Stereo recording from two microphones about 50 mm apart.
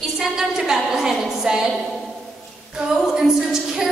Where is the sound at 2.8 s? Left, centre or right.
Centre.